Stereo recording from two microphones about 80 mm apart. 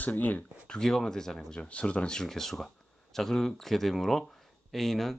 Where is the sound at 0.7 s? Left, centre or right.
Centre.